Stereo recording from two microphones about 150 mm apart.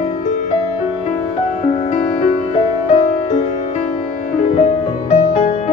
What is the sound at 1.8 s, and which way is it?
Music, 55° left (ahead or behind).